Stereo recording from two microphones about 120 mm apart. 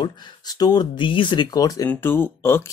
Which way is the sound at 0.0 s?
35° left (ahead or behind).